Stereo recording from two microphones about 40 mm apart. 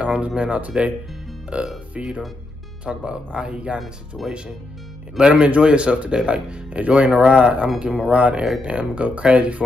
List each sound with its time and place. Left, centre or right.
0.0 s a sound: right
0.4 s speech: right
5.2 s speech: centre